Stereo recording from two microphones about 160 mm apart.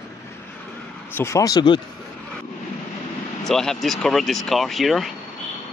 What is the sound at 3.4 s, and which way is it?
Speech, centre (ahead or behind).